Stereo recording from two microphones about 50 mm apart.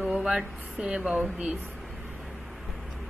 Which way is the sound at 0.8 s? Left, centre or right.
Right.